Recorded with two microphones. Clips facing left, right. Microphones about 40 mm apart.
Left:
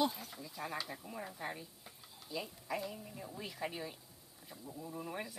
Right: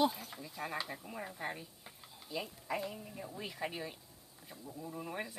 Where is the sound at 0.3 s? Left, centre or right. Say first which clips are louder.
Right 2 dB; centre.